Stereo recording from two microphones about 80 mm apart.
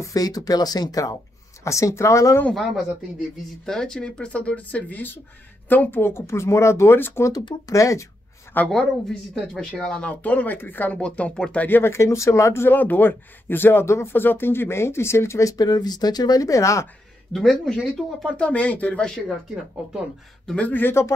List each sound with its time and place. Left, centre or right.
0.0 s speech: left
3.6 s speech: centre; by 8.1 s left
8.5 s speech: left
9.3 s speech: centre; by 15.5 s left
15.5 s speech: left
17.3 s speech: centre
19.0 s speech: centre
20.4 s speech: centre